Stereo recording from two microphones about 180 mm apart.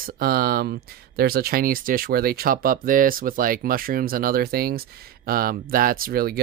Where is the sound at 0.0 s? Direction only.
55° right (ahead or behind).